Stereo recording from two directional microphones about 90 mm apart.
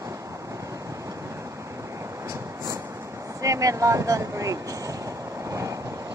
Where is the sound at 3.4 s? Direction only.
40° right (ahead or behind).